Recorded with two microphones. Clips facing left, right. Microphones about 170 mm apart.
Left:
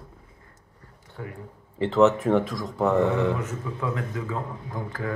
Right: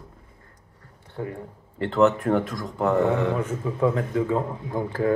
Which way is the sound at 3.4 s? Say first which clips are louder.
Right 6 dB; 30° right (ahead or behind).